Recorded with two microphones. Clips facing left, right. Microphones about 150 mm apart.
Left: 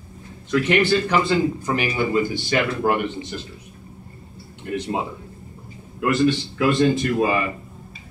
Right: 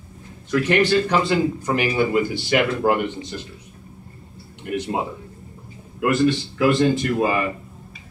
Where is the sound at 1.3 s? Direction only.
10° right (ahead or behind).